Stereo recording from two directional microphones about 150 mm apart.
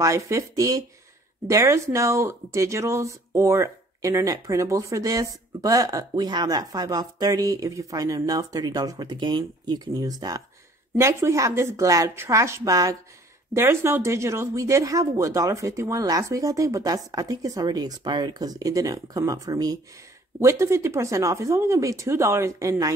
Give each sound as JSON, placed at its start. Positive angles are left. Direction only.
{"t": 0.0, "sound": "speech", "side_deg": -20}